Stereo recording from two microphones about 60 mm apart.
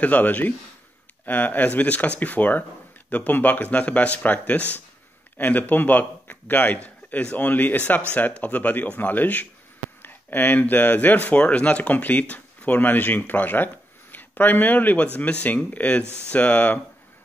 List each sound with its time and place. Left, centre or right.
0.0 s speech: left